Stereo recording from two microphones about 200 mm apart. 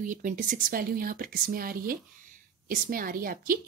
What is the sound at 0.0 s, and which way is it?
A woman's voice, 40° right (ahead or behind).